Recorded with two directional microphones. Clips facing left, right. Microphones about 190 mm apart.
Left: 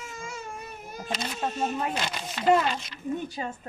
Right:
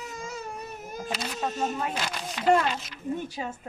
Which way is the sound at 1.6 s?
Centre (ahead or behind).